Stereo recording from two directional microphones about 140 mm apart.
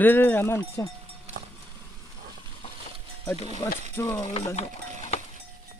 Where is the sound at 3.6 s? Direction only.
30° left (ahead or behind).